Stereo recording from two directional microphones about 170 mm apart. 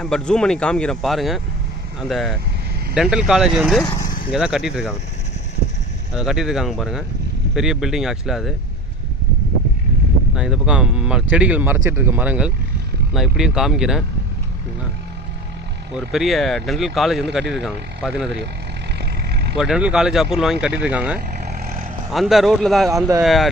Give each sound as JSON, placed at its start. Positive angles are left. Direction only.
{"t": 0.0, "sound": "speech", "side_deg": 5}
{"t": 3.8, "sound": "speech", "side_deg": 20}
{"t": 4.3, "sound": "speech", "side_deg": -5}
{"t": 6.1, "sound": "speech", "side_deg": -5}
{"t": 10.3, "sound": "speech", "side_deg": -5}
{"t": 16.1, "sound": "speech", "side_deg": 0}
{"t": 18.9, "sound": "vehicle", "side_deg": -75}
{"t": 19.5, "sound": "speech", "side_deg": -5}
{"t": 21.5, "sound": "vehicle", "side_deg": -55}
{"t": 22.1, "sound": "speech", "side_deg": 0}